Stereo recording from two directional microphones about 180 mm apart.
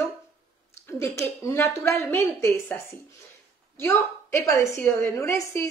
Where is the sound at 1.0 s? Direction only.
15° left (ahead or behind).